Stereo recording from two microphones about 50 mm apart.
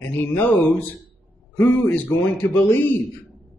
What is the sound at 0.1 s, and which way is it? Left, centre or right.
A man's voice, left.